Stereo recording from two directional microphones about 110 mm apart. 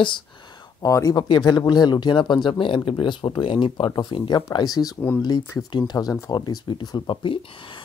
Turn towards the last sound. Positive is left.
turn(degrees=50)  # may be behind; listen again after turning